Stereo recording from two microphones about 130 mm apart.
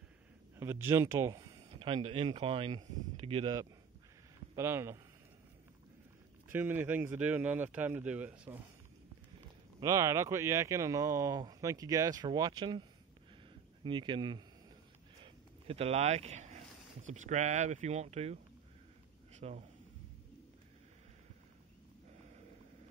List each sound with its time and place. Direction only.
0.6 s speech: 20° right (ahead or behind); by 3.4 s 50° right (ahead or behind)
4.6 s speech: 20° right (ahead or behind)
6.5 s speech: 15° right (ahead or behind)
9.8 s speech: 25° right (ahead or behind)
13.8 s speech: 40° right (ahead or behind)
15.2 s speech: 50° right (ahead or behind)
19.3 s a sound: 60° right (ahead or behind)